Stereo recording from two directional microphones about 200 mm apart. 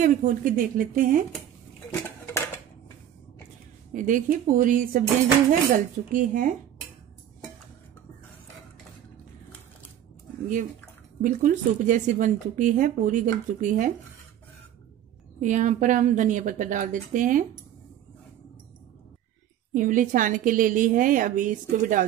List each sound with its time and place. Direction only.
0.0 s speech: 40° right (ahead or behind)
1.9 s dishes: 10° left (ahead or behind)
3.9 s speech: 40° right (ahead or behind)
11.1 s speech: 40° right (ahead or behind)
15.4 s speech: 40° right (ahead or behind)
19.7 s speech: 40° right (ahead or behind)